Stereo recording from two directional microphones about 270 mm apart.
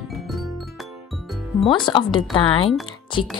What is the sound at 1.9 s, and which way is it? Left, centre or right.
Speech, centre.